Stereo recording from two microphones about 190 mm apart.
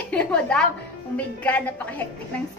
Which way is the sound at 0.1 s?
5° left (ahead or behind).